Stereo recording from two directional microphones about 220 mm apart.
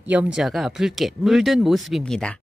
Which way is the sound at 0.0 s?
5° right (ahead or behind).